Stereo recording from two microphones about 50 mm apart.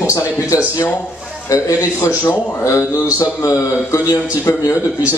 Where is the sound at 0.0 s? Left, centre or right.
Left.